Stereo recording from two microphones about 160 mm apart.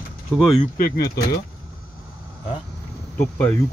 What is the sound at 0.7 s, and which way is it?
Speech, 70° left (ahead or behind).